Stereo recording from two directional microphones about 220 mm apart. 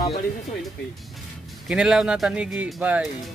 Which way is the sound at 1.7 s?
5° right (ahead or behind).